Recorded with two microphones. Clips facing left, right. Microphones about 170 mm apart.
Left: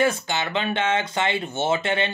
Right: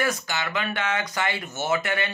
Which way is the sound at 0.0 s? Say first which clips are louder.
Left 4 dB; 25° left (ahead or behind).